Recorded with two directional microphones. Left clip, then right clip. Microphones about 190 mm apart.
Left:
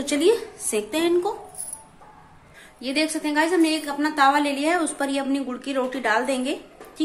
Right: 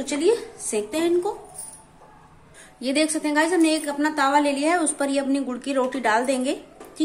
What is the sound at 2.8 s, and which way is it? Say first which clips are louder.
A woman's voice: right 2 dB; 15° right (ahead or behind).